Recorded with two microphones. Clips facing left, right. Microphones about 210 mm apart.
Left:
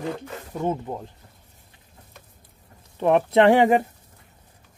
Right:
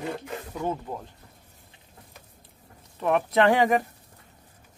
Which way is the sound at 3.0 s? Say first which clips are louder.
Left 5 dB; 30° left (ahead or behind).